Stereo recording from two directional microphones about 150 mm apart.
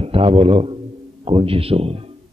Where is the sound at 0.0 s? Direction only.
40° right (ahead or behind).